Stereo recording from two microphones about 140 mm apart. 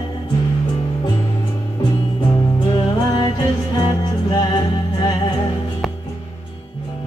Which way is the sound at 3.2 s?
35° left (ahead or behind).